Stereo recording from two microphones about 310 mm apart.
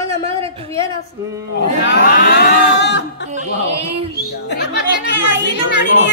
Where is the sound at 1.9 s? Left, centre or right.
Left.